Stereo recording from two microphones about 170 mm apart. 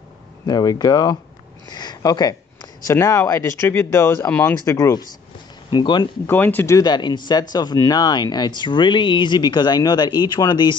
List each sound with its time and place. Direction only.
0.5 s speech: 25° left (ahead or behind)
1.7 s a sound: 25° left (ahead or behind)
3.0 s speech: 15° left (ahead or behind)
6.2 s speech: 10° left (ahead or behind)